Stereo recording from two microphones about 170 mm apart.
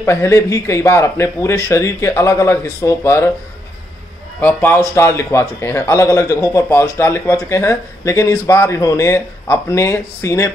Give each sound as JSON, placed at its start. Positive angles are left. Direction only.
{"t": 0.0, "sound": "a man's voice", "side_deg": 15}
{"t": 4.4, "sound": "a man's voice", "side_deg": 10}